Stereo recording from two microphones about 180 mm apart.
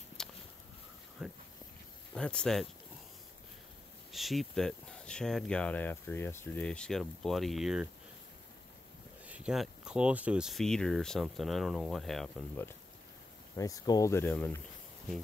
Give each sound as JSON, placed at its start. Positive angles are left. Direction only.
{"t": 0.2, "sound": "a sound", "side_deg": 5}
{"t": 2.1, "sound": "speech", "side_deg": 5}
{"t": 4.1, "sound": "speech", "side_deg": 0}
{"t": 9.2, "sound": "speech", "side_deg": -5}
{"t": 13.6, "sound": "speech", "side_deg": 20}